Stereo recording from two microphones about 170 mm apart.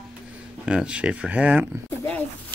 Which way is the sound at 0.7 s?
5° right (ahead or behind).